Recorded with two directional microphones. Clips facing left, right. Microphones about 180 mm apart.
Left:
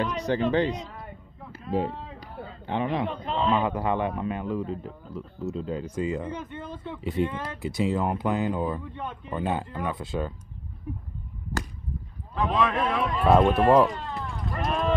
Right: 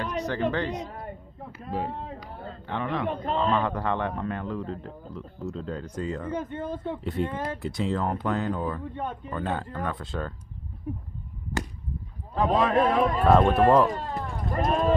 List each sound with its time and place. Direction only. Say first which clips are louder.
0.0 s speech: left 2 dB; 15° left (ahead or behind)
0.8 s a sound: right 4 dB; 45° right (ahead or behind)
2.6 s a man's voice: left 3 dB; 20° left (ahead or behind)
3.1 s speech: right 1 dB; 50° right (ahead or behind)
3.5 s speech: left 1 dB; 10° left (ahead or behind)
6.3 s speech: right 5 dB; 40° right (ahead or behind)
7.0 s speech: left 6 dB; 5° left (ahead or behind)
8.9 s speech: right 3 dB; 40° right (ahead or behind)
9.3 s speech: left 5 dB; 10° left (ahead or behind)
12.4 s speech: right 3 dB; 40° right (ahead or behind)
13.5 s speech: even; centre (ahead or behind)
13.9 s a sound: right 2 dB; 45° right (ahead or behind)